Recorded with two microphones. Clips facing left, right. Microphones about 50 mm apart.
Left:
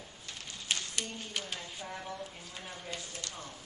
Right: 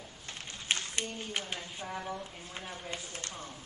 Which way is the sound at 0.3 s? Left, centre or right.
Right.